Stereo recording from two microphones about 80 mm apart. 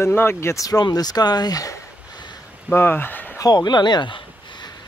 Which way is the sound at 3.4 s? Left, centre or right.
Left.